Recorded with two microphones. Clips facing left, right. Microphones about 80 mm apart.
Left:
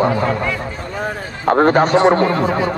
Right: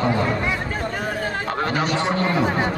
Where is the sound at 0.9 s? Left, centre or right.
Left.